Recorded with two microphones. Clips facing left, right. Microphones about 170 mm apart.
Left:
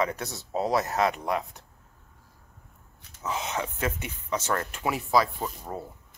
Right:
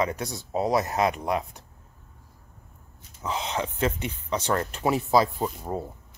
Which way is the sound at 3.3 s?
30° right (ahead or behind).